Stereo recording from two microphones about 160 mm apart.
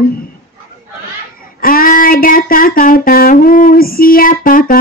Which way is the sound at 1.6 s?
60° left (ahead or behind).